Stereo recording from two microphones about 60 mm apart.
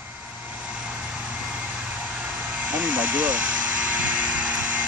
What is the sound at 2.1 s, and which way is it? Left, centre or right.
Vehicle, right.